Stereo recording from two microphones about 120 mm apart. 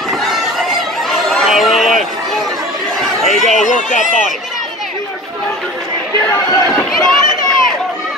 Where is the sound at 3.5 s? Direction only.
90° left.